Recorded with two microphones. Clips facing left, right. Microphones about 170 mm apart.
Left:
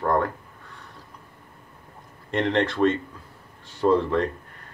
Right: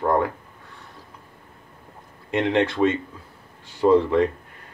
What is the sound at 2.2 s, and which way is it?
Speech, 10° right (ahead or behind).